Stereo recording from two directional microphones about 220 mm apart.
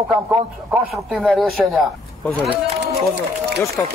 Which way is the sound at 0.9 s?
Centre (ahead or behind).